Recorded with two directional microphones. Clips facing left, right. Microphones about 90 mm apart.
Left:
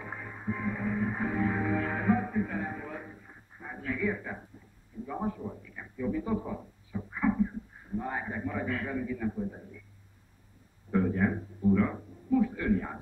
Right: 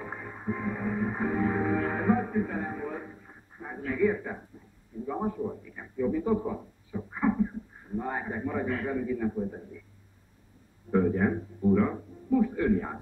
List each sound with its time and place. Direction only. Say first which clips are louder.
0.0 s music: right 2 dB; 25° right (ahead or behind)
3.6 s a man's voice: right 5 dB; 25° right (ahead or behind)
6.5 s a sound: right 2 dB; 15° right (ahead or behind)
8.0 s a man's voice: right 3 dB; 30° right (ahead or behind)
10.9 s a man's voice: right 3 dB; 25° right (ahead or behind)